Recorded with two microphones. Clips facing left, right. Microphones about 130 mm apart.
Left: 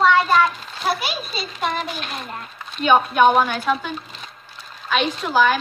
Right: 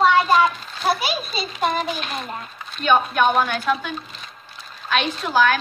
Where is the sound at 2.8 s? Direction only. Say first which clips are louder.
Left 3 dB; 10° left (ahead or behind).